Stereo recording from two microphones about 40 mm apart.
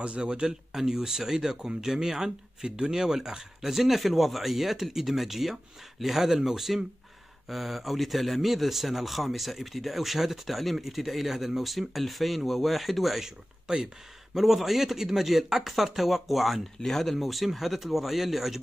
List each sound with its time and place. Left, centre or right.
0.0 s speech: right; by 13.3 s centre
13.7 s speech: centre
14.3 s speech: centre